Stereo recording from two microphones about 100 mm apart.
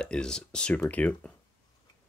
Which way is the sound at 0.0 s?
10° left (ahead or behind).